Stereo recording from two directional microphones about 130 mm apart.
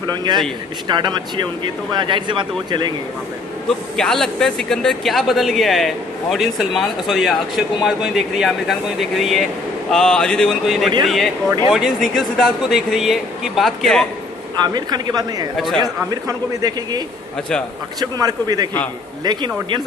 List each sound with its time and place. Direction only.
0.0 s speech: 35° right (ahead or behind)
3.6 s a man's voice: 5° left (ahead or behind)
14.6 s speech: 30° right (ahead or behind)
15.5 s a man's voice: centre (ahead or behind)
15.8 s a man's voice: 30° right (ahead or behind)
18.0 s speech: 30° right (ahead or behind)